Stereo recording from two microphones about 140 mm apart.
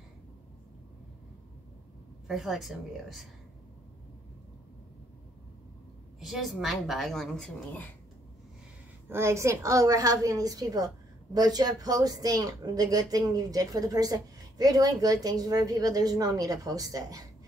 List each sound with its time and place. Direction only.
2.2 s a woman's voice: centre (ahead or behind)
6.2 s a woman's voice: centre (ahead or behind)
9.1 s speech: 20° right (ahead or behind)